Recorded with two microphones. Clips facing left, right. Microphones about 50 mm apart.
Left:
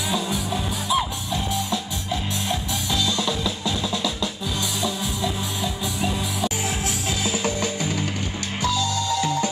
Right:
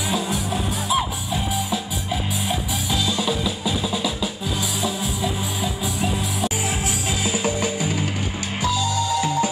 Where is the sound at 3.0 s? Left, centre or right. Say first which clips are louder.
Right 2 dB; centre.